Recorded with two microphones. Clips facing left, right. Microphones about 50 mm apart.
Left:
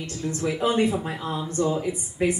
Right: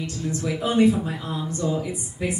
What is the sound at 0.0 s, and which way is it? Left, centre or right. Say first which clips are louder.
A woman's voice: even; left.